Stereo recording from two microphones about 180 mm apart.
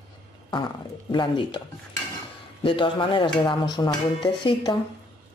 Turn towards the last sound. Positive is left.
turn(degrees=25)  # may be behind; listen again after turning